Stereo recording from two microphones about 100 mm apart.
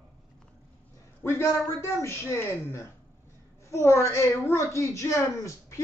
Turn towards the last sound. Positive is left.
turn(degrees=30)  # may be behind; listen again after turning